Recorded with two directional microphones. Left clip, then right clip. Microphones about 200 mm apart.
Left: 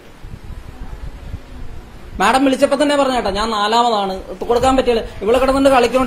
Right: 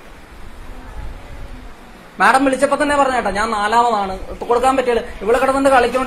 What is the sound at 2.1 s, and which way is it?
A man's voice, 35° left (ahead or behind).